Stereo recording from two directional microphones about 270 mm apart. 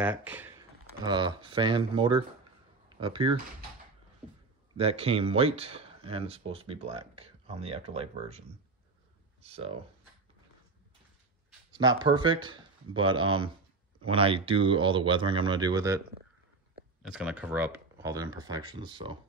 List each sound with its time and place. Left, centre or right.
0.0 s speech: centre
4.7 s speech: right
11.7 s speech: centre
17.1 s speech: centre